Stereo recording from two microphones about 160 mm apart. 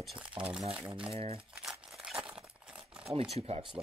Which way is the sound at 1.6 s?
5° right (ahead or behind).